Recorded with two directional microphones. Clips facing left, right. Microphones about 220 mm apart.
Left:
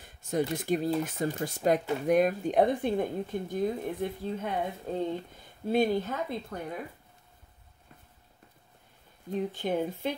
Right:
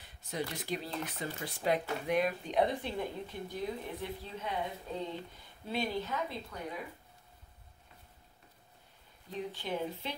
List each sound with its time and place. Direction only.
0.0 s a sound: 50° left (ahead or behind)
0.6 s speech: 50° left (ahead or behind)
9.3 s speech: 50° left (ahead or behind)